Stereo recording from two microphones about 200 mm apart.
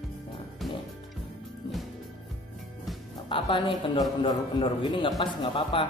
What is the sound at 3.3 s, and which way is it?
A man's voice, 25° left (ahead or behind).